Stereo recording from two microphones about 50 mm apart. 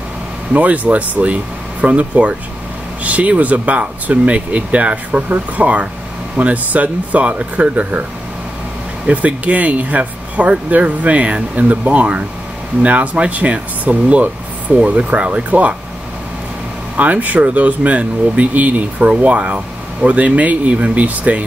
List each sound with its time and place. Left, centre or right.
0.5 s speech: right
9.0 s speech: right
16.9 s speech: right